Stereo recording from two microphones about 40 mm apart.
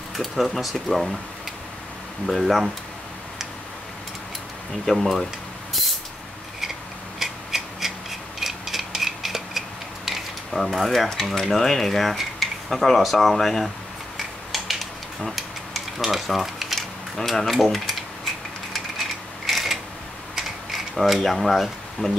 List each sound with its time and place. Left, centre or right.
0.1 s speech: centre
2.2 s speech: centre
4.8 s speech: centre
7.2 s rub: centre
11.1 s speech: centre
14.1 s a sound: centre
17.2 s speech: centre
17.6 s typewriter: centre
20.3 s camera: centre